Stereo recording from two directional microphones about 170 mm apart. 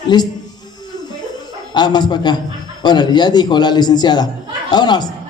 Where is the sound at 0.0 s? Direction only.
25° left (ahead or behind).